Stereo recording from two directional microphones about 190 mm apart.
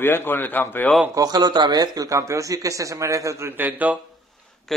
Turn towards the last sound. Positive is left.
turn(degrees=-10)  # may be behind; listen again after turning